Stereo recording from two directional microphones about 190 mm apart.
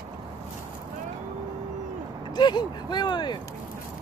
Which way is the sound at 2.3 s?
25° left (ahead or behind).